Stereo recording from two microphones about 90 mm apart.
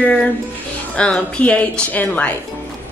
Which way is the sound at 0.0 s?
15° left (ahead or behind).